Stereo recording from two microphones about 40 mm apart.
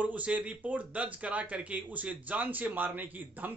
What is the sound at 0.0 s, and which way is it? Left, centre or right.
Speech, right.